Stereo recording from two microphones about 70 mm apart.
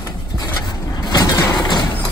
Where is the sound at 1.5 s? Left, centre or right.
Left.